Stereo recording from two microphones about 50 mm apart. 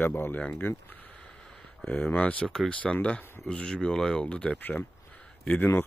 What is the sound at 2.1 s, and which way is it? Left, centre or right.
Speech, left.